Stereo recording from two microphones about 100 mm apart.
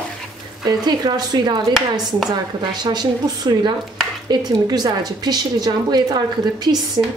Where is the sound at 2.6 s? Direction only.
45° right (ahead or behind).